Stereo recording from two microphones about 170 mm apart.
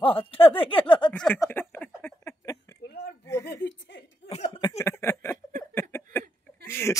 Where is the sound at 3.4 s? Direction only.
85° left.